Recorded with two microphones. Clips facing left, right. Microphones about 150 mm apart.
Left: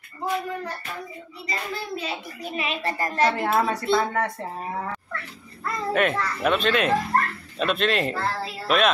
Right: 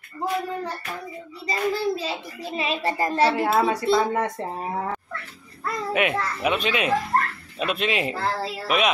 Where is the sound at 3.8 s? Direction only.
25° right (ahead or behind).